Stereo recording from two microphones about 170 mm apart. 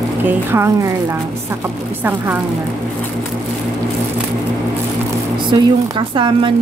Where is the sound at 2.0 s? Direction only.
10° right (ahead or behind).